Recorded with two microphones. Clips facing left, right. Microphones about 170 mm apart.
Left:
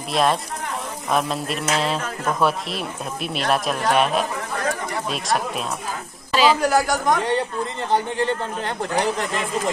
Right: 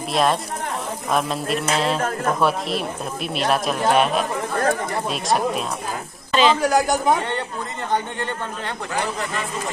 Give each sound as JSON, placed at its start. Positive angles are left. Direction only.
{"t": 0.1, "sound": "speech", "side_deg": 0}
{"t": 2.0, "sound": "speech", "side_deg": -50}
{"t": 2.4, "sound": "a woman's voice", "side_deg": 0}
{"t": 6.6, "sound": "speech", "side_deg": -20}